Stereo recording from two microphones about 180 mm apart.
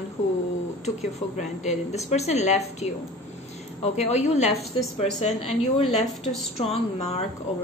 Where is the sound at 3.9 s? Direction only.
40° left (ahead or behind).